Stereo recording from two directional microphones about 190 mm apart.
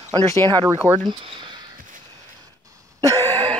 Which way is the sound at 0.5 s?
25° right (ahead or behind).